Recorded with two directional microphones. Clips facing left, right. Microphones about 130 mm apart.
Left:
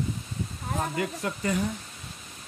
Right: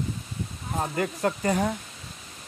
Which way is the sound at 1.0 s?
50° right (ahead or behind).